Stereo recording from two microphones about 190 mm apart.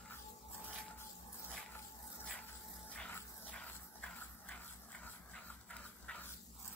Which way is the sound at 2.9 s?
5° left (ahead or behind).